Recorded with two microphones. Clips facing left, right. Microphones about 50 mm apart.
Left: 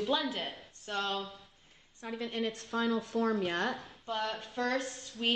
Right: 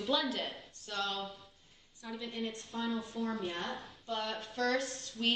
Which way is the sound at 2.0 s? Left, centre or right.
Left.